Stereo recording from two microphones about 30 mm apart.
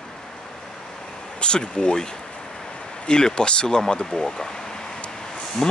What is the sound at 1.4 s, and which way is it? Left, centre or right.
Speech, left.